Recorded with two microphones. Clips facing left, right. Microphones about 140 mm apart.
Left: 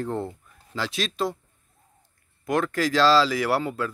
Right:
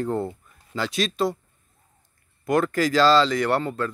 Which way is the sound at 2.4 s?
Centre (ahead or behind).